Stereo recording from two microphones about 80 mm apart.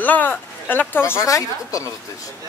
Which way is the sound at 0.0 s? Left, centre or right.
Left.